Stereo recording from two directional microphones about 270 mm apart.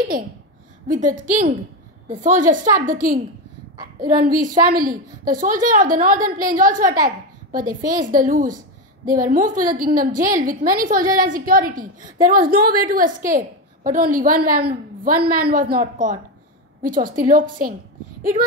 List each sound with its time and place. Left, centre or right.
0.8 s a woman's voice: right
4.2 s a woman's voice: right
6.9 s a child's voice: centre
7.5 s a woman's voice: right